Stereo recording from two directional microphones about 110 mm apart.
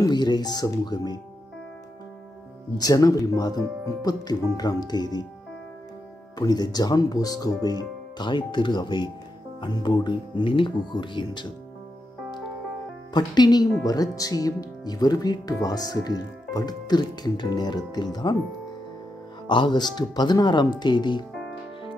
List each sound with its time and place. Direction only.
0.0 s speech: 40° left (ahead or behind)
2.8 s speech: 35° left (ahead or behind)
6.3 s speech: 35° left (ahead or behind)
13.1 s speech: 40° left (ahead or behind)
19.4 s speech: 45° left (ahead or behind)